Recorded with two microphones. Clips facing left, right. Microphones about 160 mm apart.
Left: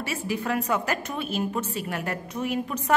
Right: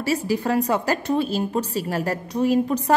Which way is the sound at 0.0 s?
35° right (ahead or behind).